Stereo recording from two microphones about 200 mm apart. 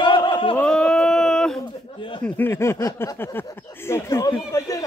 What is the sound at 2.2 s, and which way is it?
Speech, 10° left (ahead or behind).